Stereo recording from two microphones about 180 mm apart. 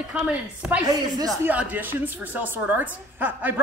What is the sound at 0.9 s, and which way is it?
Speech, 20° right (ahead or behind).